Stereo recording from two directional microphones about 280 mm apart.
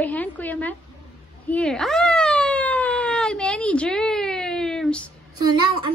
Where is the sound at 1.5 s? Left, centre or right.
Centre.